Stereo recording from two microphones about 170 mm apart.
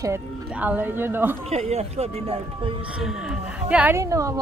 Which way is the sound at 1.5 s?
40° right (ahead or behind).